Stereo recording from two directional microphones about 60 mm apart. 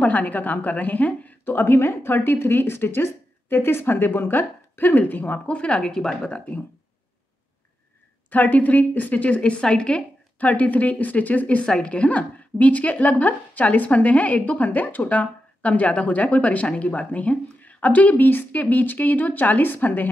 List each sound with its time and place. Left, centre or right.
0.0 s a woman's voice: left
1.4 s speech: left; by 6.3 s centre
8.3 s a woman's voice: left